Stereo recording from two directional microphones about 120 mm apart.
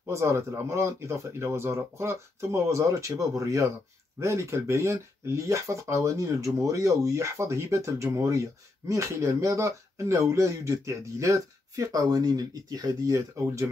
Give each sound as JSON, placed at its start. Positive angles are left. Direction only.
{"t": 0.0, "sound": "speech", "side_deg": -20}